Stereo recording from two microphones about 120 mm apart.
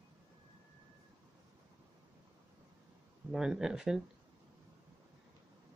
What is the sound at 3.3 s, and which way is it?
Speech, 5° right (ahead or behind).